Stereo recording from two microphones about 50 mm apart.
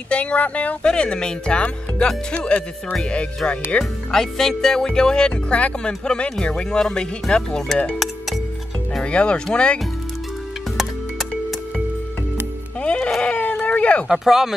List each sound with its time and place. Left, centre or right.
0.1 s speech: left
4.1 s speech: centre
9.0 s speech: left
12.8 s bleat: left
13.2 s a sound: left
14.0 s speech: centre